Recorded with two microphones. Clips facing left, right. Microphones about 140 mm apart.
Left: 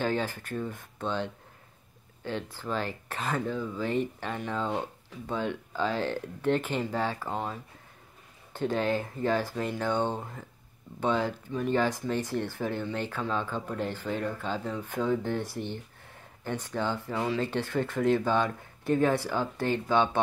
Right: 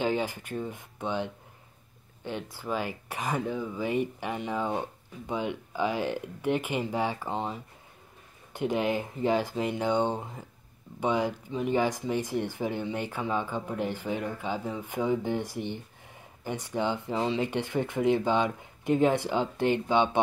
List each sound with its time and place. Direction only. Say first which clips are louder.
0.0 s speech: right 1 dB; 15° right (ahead or behind)